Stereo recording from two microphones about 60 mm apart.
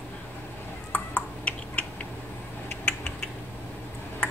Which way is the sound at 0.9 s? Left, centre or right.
Left.